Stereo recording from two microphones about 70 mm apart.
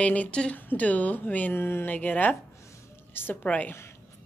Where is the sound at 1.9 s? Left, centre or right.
Left.